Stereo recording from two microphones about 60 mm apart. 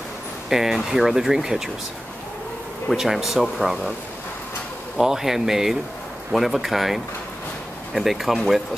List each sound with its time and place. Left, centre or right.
0.5 s speech: centre
2.9 s speech: centre
4.9 s speech: centre